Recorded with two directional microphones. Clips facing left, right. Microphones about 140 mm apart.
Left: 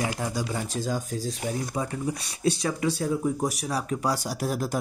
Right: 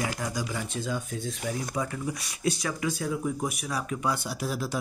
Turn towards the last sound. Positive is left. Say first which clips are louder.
# left 3 dB
turn(degrees=45)  # may be behind; listen again after turning